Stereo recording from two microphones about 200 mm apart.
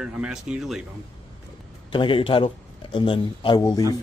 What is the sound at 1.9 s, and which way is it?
Speech, 25° left (ahead or behind).